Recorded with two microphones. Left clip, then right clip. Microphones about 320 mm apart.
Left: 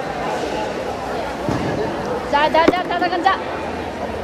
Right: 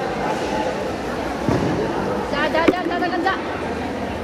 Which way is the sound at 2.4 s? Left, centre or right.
Left.